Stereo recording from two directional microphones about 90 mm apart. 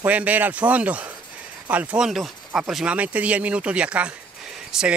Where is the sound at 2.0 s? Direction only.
5° right (ahead or behind).